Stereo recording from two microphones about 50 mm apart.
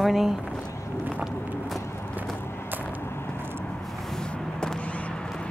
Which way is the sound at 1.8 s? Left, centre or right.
Left.